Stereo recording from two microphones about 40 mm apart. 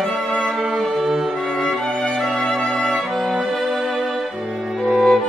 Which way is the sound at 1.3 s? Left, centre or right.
Centre.